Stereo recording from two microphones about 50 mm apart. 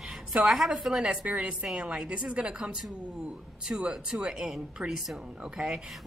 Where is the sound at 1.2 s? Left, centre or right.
Right.